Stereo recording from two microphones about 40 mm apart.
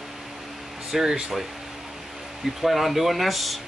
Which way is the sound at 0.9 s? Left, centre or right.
Centre.